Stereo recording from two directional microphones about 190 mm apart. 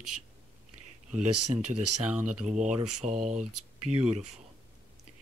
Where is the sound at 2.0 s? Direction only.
5° right (ahead or behind).